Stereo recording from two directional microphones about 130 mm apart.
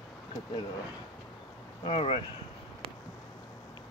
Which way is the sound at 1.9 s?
45° left (ahead or behind).